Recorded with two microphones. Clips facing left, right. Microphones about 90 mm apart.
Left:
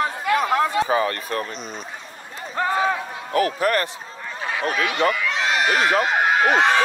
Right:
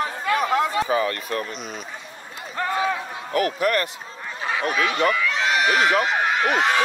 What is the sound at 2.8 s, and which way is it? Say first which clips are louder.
Run: left 2 dB; 35° left (ahead or behind).